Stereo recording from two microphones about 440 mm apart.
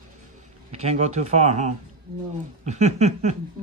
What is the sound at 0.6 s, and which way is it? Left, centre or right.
Speech, centre.